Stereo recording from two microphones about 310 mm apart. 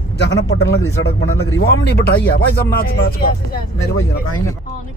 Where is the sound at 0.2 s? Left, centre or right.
Left.